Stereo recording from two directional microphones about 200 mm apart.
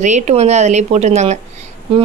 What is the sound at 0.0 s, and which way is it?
Speech, 35° right (ahead or behind).